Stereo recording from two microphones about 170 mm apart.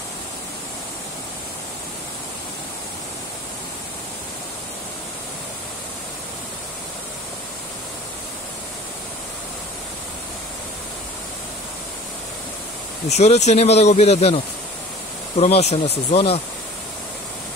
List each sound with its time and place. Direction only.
13.1 s speech: 40° left (ahead or behind)